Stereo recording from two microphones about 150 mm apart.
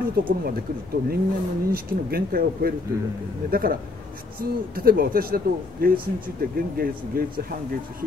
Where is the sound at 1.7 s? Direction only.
90° right.